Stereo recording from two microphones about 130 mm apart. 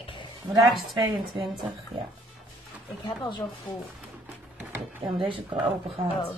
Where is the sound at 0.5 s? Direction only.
35° right (ahead or behind).